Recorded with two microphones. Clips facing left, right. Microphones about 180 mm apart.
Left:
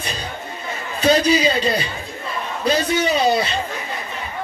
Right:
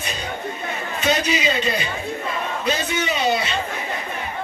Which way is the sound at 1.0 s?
35° left (ahead or behind).